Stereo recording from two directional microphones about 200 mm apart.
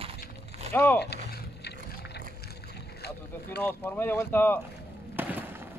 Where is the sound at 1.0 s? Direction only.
55° left (ahead or behind).